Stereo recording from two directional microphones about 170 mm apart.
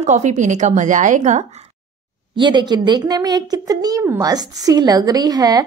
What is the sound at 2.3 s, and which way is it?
Speech, 25° right (ahead or behind).